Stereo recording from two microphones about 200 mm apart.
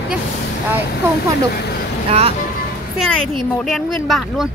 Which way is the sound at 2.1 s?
30° right (ahead or behind).